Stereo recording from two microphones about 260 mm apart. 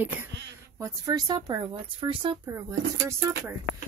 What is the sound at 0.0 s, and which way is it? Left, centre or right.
Speech, centre.